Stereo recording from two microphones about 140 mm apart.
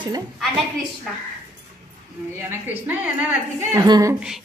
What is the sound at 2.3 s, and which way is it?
A woman's voice, 15° right (ahead or behind).